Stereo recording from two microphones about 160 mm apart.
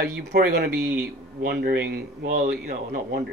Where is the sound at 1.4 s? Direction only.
75° right (ahead or behind).